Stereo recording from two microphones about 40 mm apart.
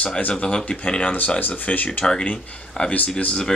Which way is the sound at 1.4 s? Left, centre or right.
Left.